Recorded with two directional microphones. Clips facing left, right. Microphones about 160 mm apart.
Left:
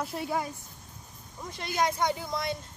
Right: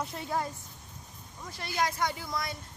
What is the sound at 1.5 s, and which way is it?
Speech, 20° left (ahead or behind).